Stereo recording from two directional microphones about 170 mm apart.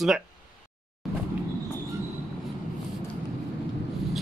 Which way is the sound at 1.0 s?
Centre (ahead or behind).